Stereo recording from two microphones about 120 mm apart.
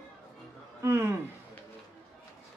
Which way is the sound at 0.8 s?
20° right (ahead or behind).